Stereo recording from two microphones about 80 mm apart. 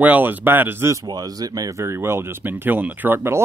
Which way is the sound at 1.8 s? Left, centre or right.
Right.